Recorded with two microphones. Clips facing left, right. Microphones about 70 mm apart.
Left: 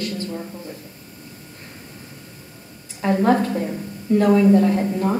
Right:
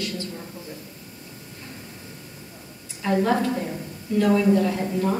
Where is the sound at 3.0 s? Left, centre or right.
Left.